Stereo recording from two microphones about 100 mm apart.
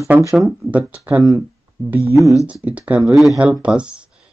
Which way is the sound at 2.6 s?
15° right (ahead or behind).